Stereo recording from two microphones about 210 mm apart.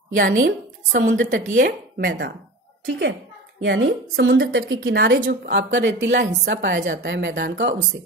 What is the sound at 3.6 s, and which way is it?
A woman's voice, 60° right (ahead or behind).